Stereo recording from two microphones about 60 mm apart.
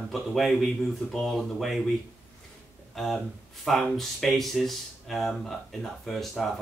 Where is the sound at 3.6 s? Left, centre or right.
Centre.